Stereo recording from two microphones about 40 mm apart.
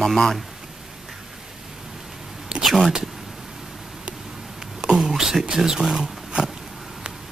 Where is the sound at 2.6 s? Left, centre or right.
Centre.